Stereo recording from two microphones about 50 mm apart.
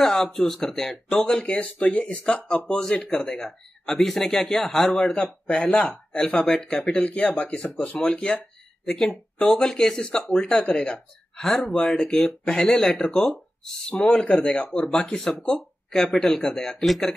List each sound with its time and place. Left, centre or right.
0.0 s speech: centre
5.0 s speech: left
6.1 s speech: centre
7.0 s speech: left
7.5 s speech: centre
7.8 s speech: left
10.4 s speech: left; by 17.1 s centre